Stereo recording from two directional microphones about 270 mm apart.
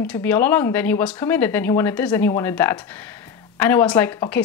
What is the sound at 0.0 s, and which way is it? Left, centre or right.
Speech, centre.